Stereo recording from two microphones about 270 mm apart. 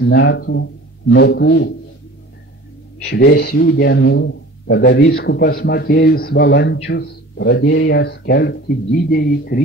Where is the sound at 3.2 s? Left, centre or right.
Left.